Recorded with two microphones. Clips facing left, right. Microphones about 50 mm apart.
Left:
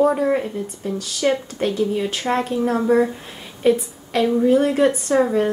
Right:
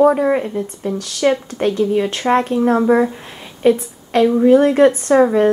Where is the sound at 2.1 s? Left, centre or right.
Centre.